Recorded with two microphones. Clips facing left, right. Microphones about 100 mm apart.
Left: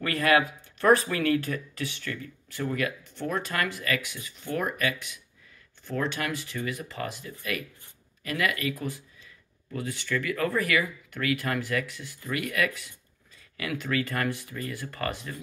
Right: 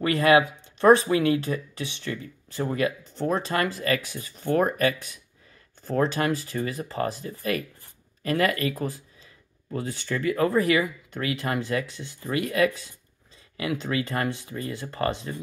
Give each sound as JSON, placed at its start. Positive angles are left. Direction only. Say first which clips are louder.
{"t": 0.0, "sound": "speech", "louder": "right 4 dB", "side_deg": -25}